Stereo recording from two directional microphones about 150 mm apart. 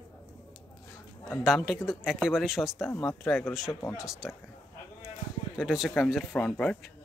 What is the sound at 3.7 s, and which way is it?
Speech, 20° left (ahead or behind).